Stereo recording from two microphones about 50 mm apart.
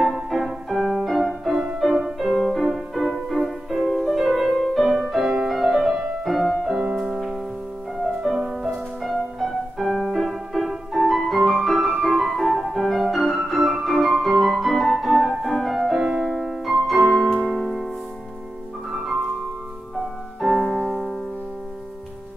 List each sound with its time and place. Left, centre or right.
0.0 s music: centre
1.8 s music: centre
6.7 s music: centre
7.0 s music: centre
15.8 s music: centre
20.0 s music: centre
20.6 s piano: centre